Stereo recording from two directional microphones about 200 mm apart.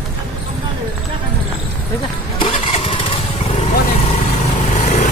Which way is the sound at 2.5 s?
30° left (ahead or behind).